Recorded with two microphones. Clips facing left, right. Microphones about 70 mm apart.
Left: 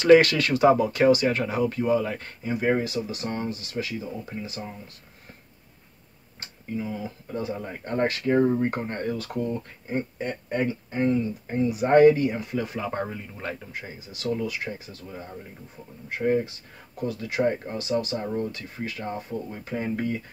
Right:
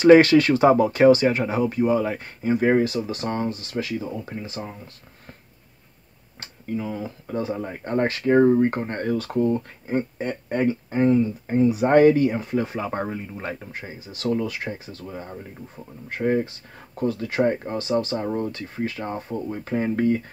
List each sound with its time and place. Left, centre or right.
0.0 s speech: right
2.4 s speech: right
3.8 s speech: right
6.8 s speech: right